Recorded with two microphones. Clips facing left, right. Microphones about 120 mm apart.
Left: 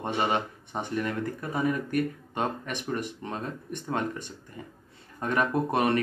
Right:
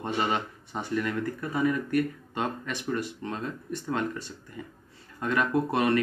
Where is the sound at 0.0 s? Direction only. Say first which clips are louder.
Left 1 dB; 20° left (ahead or behind).